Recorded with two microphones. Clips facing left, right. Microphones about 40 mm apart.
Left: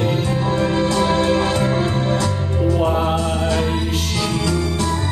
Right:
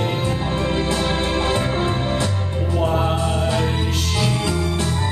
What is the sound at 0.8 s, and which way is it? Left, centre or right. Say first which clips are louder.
Music: left 4 dB; centre.